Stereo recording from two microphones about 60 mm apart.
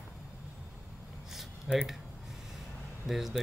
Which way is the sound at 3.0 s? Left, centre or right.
Centre.